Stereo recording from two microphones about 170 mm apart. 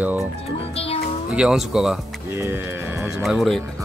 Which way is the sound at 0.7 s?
35° left (ahead or behind).